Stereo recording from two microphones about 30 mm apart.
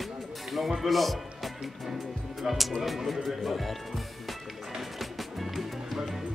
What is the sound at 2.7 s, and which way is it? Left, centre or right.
Speech, centre.